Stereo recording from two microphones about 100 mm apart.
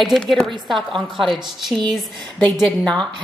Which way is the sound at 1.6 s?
Centre (ahead or behind).